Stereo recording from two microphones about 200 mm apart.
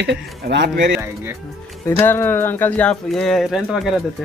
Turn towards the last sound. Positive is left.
turn(degrees=0)  # may be behind; listen again after turning